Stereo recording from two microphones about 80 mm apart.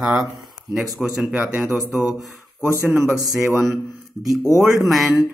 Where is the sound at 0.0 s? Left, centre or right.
Centre.